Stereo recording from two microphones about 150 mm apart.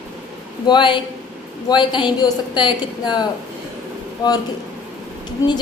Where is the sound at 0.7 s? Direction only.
30° left (ahead or behind).